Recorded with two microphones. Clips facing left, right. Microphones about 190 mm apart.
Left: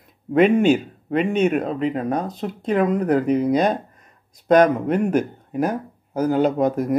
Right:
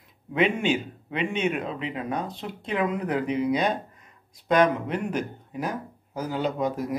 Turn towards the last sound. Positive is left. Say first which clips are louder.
# left 7 dB
turn(degrees=50)  # may be behind; listen again after turning